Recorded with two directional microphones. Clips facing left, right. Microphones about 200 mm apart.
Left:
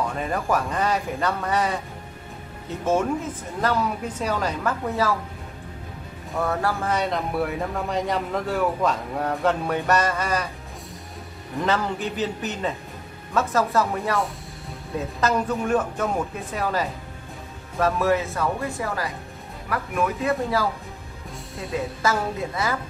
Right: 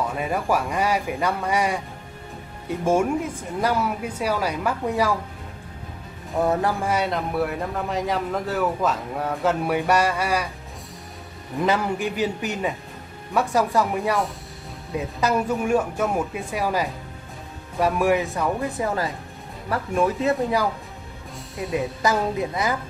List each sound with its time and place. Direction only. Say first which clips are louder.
0.1 s speech: right 1 dB; 10° right (ahead or behind)
2.8 s speech: right 2 dB; 10° right (ahead or behind)
6.3 s speech: right 3 dB; 20° right (ahead or behind)
6.9 s speech: right 1 dB; 5° right (ahead or behind)
11.6 s speech: right 2 dB; 10° right (ahead or behind)
21.7 s speech: right 2 dB; 15° right (ahead or behind)